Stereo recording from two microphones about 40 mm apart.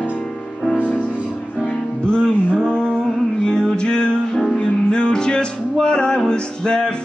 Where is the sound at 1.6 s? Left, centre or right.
Centre.